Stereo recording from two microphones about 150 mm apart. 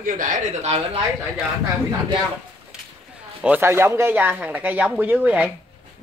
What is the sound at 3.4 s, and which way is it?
Speech, 10° right (ahead or behind).